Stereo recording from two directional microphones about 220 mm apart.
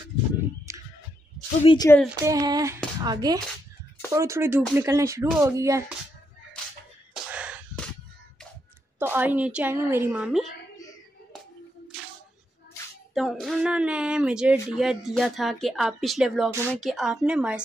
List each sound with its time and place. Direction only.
0.7 s a sound: 15° right (ahead or behind)
1.6 s speech: 25° left (ahead or behind)
2.0 s a woman's voice: 15° right (ahead or behind)
7.2 s a sound: 5° right (ahead or behind)
9.0 s a woman's voice: 10° right (ahead or behind)
13.1 s a woman's voice: centre (ahead or behind)